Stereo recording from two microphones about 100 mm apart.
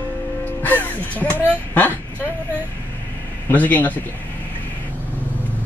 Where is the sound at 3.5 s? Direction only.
15° left (ahead or behind).